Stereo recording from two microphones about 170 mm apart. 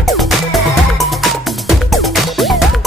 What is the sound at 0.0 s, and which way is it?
Music, centre (ahead or behind).